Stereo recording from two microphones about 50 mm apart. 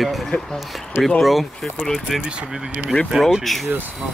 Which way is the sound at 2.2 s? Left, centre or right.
Centre.